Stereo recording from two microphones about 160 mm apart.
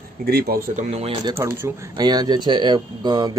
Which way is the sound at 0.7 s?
40° right (ahead or behind).